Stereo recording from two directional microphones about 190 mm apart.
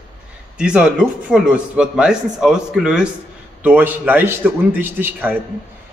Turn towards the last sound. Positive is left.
turn(degrees=-10)  # may be behind; listen again after turning